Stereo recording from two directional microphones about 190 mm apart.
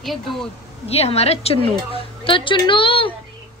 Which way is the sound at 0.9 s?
35° left (ahead or behind).